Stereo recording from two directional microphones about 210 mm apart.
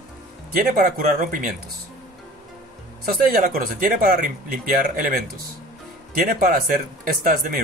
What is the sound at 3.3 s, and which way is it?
Speech, 45° right (ahead or behind).